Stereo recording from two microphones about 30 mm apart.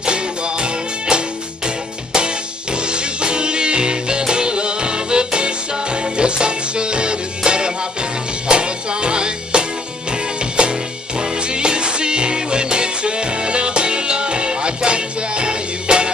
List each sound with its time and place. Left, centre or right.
0.0 s music: right